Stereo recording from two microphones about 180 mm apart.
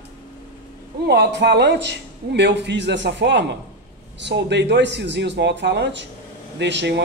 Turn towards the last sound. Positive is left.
turn(degrees=-75)  # may be behind; listen again after turning